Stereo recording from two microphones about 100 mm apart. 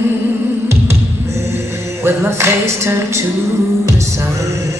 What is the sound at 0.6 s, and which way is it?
Music, 25° right (ahead or behind).